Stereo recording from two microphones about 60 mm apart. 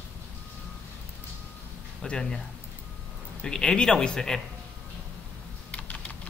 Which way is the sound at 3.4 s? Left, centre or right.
Centre.